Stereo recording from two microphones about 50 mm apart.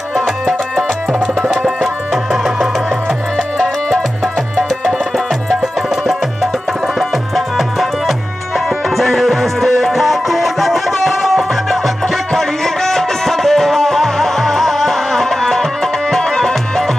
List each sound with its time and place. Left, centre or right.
0.5 s music: centre
3.3 s music: centre
5.8 s music: centre